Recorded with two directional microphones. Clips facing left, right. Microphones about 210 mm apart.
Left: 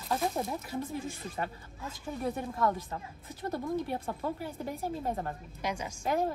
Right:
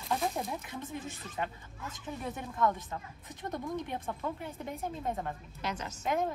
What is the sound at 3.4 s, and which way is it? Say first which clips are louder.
Speech: left 3 dB; 5° left (ahead or behind).